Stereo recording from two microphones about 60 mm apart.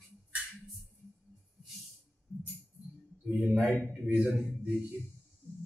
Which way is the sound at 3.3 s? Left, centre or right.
Centre.